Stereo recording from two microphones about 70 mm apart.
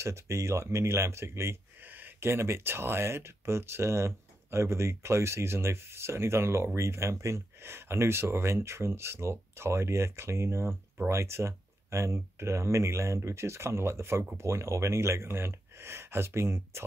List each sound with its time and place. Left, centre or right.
0.0 s speech: right
1.8 s speech: right